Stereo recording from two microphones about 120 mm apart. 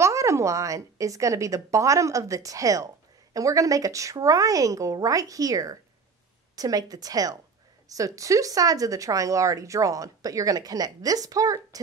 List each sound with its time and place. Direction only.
0.0 s a woman's voice: 25° right (ahead or behind)